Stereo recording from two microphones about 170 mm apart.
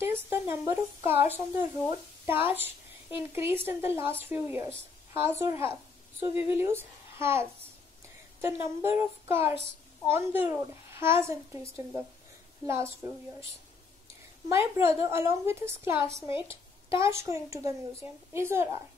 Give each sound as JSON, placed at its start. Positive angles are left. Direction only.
{"t": 0.0, "sound": "speech", "side_deg": -15}
{"t": 14.5, "sound": "speech", "side_deg": -15}